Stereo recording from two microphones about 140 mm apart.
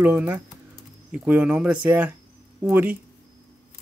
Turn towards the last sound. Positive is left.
turn(degrees=-15)  # may be behind; listen again after turning